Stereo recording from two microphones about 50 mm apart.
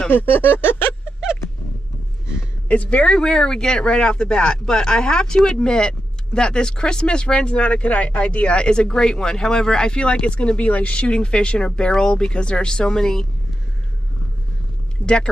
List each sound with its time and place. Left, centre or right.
0.1 s speech: left
2.7 s speech: left; by 13.3 s centre
15.0 s a woman's voice: left